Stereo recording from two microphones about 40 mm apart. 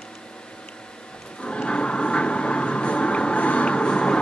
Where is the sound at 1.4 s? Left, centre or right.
Left.